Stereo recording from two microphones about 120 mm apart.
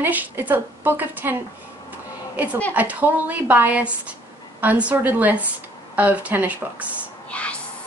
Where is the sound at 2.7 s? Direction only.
15° right (ahead or behind).